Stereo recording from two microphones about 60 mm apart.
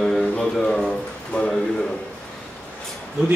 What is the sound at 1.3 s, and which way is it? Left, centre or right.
Speech, left.